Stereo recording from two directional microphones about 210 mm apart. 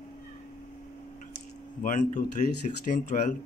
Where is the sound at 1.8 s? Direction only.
40° left (ahead or behind).